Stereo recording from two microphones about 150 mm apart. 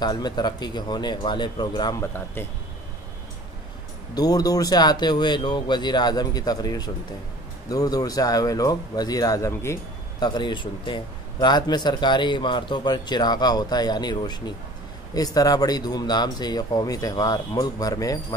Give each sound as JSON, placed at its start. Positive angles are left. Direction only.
{"t": 0.0, "sound": "a man's voice", "side_deg": 30}
{"t": 4.1, "sound": "a man's voice", "side_deg": 25}
{"t": 10.2, "sound": "a man's voice", "side_deg": 30}